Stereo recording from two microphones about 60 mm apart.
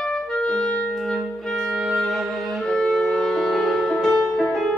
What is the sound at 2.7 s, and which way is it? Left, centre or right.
Music, centre.